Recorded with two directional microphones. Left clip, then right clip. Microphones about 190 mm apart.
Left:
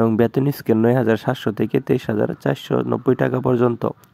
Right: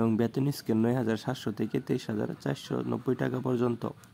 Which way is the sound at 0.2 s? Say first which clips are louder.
Left 12 dB; 35° left (ahead or behind).